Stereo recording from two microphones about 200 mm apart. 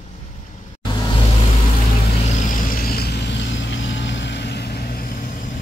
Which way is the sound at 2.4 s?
45° left (ahead or behind).